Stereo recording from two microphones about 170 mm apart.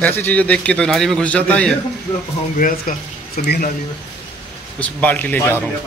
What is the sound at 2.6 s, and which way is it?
A man's voice, 55° left (ahead or behind).